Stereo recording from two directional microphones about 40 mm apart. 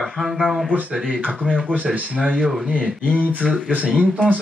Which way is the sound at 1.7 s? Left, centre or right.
Right.